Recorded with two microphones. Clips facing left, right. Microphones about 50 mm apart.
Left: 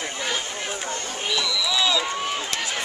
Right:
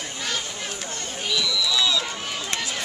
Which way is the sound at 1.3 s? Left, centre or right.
Centre.